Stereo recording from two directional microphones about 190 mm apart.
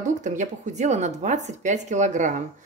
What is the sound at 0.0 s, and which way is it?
Speech, 40° right (ahead or behind).